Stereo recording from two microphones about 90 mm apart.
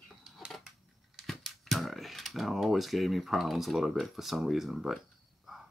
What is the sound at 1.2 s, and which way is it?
Speech, centre (ahead or behind).